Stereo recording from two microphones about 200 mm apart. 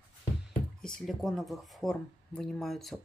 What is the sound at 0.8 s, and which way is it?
Speech, 5° left (ahead or behind).